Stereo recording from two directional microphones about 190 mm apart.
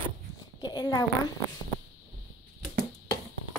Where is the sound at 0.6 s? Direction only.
20° left (ahead or behind).